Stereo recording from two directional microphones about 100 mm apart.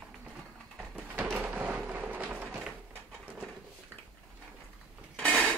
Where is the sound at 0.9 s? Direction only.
15° right (ahead or behind).